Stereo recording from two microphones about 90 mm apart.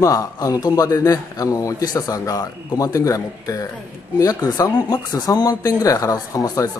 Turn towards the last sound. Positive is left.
turn(degrees=45)  # may be behind; listen again after turning